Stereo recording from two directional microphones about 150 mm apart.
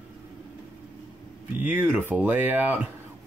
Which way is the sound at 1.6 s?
15° right (ahead or behind).